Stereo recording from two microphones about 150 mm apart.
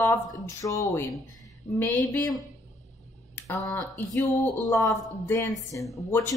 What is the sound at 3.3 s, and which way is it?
A woman's voice, 20° left (ahead or behind).